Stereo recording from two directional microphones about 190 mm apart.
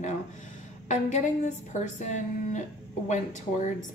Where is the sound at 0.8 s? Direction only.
40° left (ahead or behind).